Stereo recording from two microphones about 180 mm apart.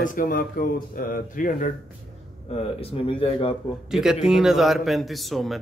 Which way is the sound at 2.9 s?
30° left (ahead or behind).